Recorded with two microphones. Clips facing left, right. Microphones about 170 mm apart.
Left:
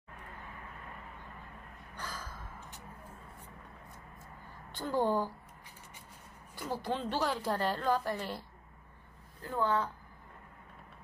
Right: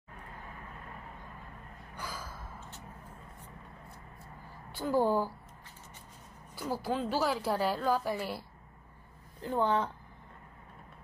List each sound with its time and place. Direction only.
2.0 s gasp: 10° right (ahead or behind)
4.7 s a woman's voice: 5° right (ahead or behind)
6.7 s a woman's voice: 5° right (ahead or behind)
9.4 s speech: 20° right (ahead or behind)